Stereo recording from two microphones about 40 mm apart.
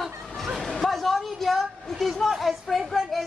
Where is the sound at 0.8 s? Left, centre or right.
Centre.